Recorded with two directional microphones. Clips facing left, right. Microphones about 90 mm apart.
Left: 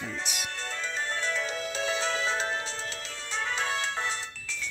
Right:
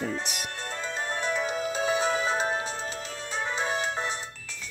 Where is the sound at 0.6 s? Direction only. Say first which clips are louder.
Right 2 dB; 15° right (ahead or behind).